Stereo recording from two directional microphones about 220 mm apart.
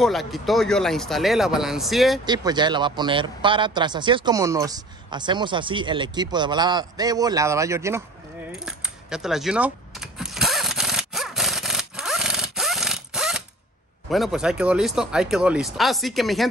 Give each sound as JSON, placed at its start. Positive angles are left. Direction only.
{"t": 0.0, "sound": "speech", "side_deg": 0}
{"t": 2.2, "sound": "speech", "side_deg": -20}
{"t": 8.5, "sound": "keys jangling", "side_deg": -5}
{"t": 14.1, "sound": "speech", "side_deg": 0}